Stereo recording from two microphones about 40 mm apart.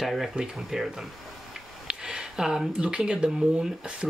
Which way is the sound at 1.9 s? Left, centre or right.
Right.